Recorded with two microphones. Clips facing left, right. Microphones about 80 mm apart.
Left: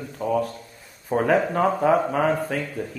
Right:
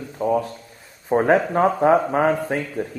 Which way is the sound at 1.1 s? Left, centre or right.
Right.